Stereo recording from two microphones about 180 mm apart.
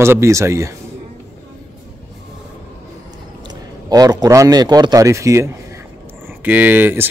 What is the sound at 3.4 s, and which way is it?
Speech, 20° right (ahead or behind).